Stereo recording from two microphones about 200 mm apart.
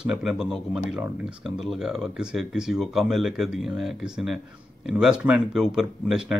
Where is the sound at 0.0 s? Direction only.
Centre (ahead or behind).